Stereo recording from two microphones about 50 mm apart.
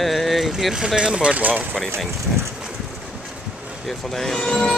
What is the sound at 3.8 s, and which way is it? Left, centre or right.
Speech, centre.